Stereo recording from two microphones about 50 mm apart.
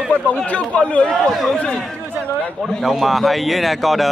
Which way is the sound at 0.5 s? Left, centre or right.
Left.